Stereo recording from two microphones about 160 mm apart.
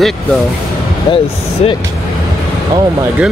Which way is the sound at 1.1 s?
35° left (ahead or behind).